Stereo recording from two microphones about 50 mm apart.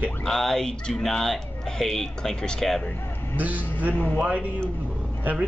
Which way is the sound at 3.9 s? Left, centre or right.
Left.